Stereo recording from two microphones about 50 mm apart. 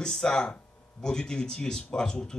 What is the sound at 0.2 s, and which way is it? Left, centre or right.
A man's voice, centre.